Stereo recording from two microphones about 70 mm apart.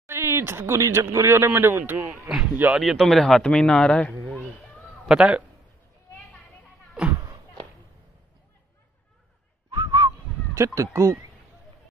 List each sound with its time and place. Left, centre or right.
0.0 s a man's voice: right
2.2 s speech: centre
2.5 s speech: right
3.1 s a man's voice: centre
5.0 s speech: centre
9.7 s whistling: right
10.5 s speech: right